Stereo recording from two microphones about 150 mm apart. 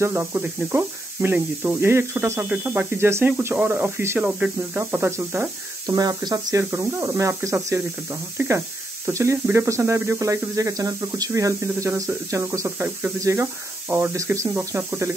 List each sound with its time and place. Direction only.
0.0 s speech: 15° right (ahead or behind)